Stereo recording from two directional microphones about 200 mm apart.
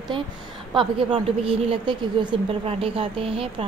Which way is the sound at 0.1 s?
25° right (ahead or behind).